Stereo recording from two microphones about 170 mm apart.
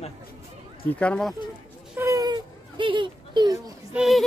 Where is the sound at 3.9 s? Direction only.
5° right (ahead or behind).